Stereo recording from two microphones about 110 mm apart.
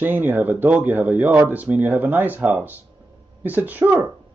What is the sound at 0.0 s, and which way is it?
A man's voice, 15° right (ahead or behind).